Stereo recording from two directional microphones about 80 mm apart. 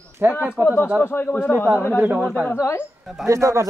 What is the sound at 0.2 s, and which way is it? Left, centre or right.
Speech, right.